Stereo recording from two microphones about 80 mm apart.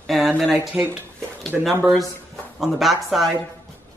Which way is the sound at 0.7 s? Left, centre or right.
Right.